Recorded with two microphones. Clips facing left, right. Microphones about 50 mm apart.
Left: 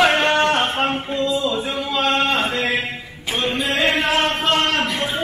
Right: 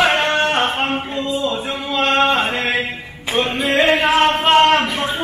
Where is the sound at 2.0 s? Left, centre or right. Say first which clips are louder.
Right 4 dB; right.